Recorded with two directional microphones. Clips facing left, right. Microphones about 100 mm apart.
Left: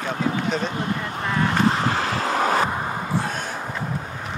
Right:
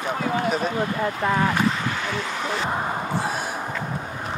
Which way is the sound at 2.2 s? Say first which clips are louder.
Left 6 dB; 45° left (ahead or behind).